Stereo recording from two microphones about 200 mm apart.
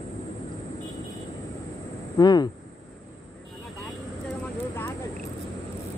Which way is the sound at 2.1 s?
20° left (ahead or behind).